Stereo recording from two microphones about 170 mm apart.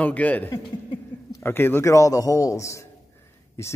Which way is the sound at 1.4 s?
15° left (ahead or behind).